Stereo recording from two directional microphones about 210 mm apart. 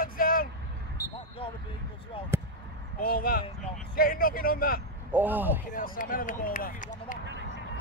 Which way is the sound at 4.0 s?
45° left (ahead or behind).